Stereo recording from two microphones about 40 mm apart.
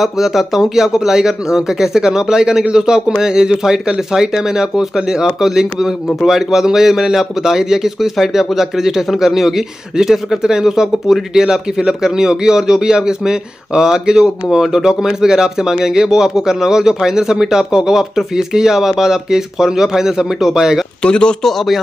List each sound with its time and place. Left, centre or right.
0.0 s a man's voice: centre
21.0 s speech: left
21.4 s speech: centre